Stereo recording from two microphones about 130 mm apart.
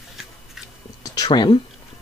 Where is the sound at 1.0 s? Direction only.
30° left (ahead or behind).